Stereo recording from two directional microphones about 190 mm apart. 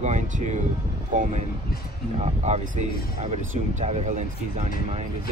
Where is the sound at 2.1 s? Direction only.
35° right (ahead or behind).